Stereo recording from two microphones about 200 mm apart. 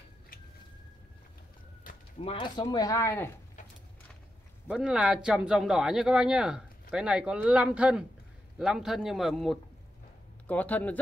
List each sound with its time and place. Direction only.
2.1 s speech: 25° left (ahead or behind)
4.6 s speech: 5° right (ahead or behind)